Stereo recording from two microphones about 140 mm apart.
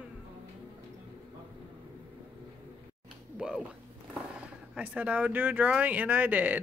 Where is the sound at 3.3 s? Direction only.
5° right (ahead or behind).